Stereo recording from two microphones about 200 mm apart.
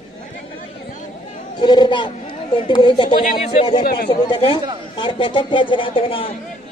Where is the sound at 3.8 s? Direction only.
50° left (ahead or behind).